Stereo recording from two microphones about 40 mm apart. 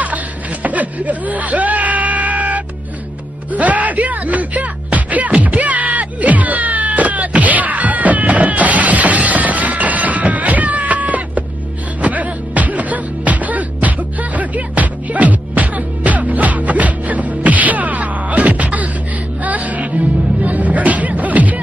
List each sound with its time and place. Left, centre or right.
0.0 s snicker: right
3.5 s music: right